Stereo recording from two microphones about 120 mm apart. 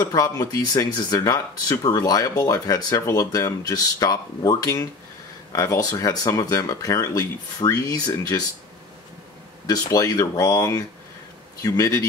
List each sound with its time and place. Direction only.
0.1 s speech: 30° left (ahead or behind)
9.7 s speech: 30° left (ahead or behind)